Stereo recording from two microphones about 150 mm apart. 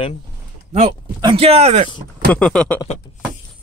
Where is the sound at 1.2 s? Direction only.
40° right (ahead or behind).